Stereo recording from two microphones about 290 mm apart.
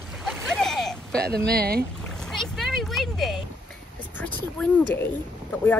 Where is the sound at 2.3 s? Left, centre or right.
Centre.